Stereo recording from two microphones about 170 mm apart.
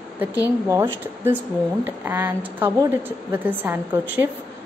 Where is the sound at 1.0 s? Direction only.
10° right (ahead or behind).